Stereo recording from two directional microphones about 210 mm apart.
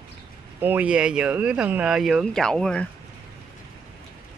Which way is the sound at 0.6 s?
10° right (ahead or behind).